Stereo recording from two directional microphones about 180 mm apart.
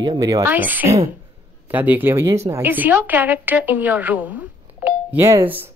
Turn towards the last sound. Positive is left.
turn(degrees=-10)  # may be behind; listen again after turning